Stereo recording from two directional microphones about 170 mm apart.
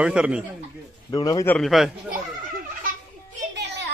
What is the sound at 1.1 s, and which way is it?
Speech, 20° left (ahead or behind).